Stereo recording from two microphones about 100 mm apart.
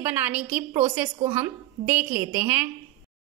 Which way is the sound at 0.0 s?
20° right (ahead or behind).